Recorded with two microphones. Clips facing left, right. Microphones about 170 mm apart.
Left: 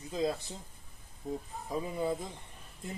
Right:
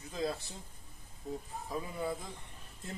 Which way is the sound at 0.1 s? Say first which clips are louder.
Left 4 dB; 20° left (ahead or behind).